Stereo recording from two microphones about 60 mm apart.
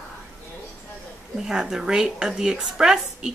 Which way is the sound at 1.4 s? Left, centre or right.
Centre.